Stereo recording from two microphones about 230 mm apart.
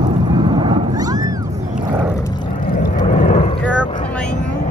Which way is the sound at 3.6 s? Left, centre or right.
Centre.